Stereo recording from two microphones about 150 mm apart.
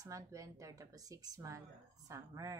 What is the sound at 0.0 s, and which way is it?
Speech, 20° right (ahead or behind).